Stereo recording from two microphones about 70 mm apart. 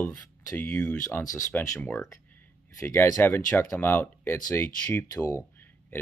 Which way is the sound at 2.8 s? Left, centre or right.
Left.